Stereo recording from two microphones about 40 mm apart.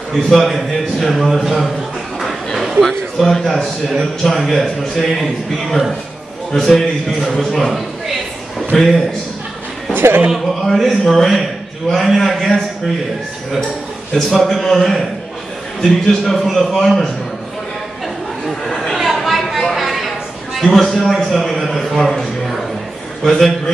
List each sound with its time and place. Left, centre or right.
0.1 s a man's voice: centre
2.1 s a sound: centre
3.2 s a man's voice: centre
9.9 s a man's voice: right
10.3 s a man's voice: centre
14.3 s a man's voice: centre
18.5 s chatter: centre
18.9 s chatter: centre
19.7 s a sound: centre
20.6 s a man's voice: centre